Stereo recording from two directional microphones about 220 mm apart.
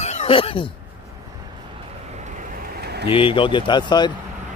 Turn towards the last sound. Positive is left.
turn(degrees=20)  # may be behind; listen again after turning